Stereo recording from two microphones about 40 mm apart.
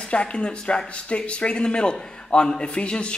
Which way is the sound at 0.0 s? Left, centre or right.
Left.